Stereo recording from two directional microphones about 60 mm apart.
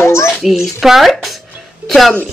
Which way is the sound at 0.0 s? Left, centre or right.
Left.